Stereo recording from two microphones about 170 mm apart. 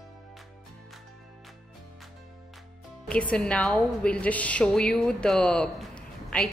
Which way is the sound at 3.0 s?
5° left (ahead or behind).